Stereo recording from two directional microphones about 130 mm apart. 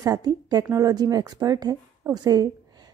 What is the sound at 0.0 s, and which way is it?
A woman's voice, 30° right (ahead or behind).